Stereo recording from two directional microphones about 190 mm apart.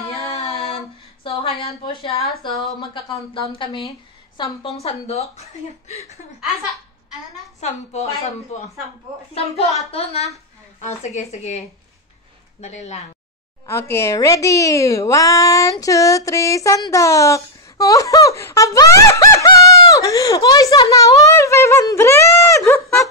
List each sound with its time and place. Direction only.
0.1 s a sound: 30° left (ahead or behind)
1.2 s speech: 30° left (ahead or behind)
3.5 s a woman's voice: 25° left (ahead or behind)
7.6 s a woman's voice: 35° left (ahead or behind)
9.8 s a woman's voice: 35° left (ahead or behind)
13.7 s a woman's voice: 15° left (ahead or behind)